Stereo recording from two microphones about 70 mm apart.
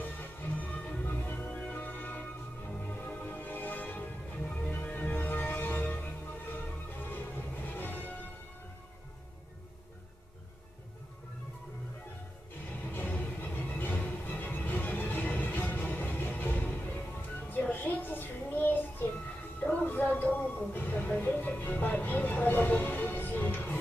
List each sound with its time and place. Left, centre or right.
0.0 s music: left
1.0 s music: left
7.1 s music: left
12.9 s music: left
19.6 s a sound: left